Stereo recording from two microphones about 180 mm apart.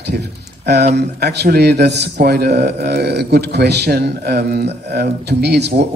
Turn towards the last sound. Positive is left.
turn(degrees=-65)  # may be behind; listen again after turning